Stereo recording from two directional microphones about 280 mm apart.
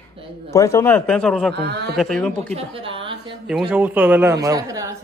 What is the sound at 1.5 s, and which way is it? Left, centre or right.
Speech, right.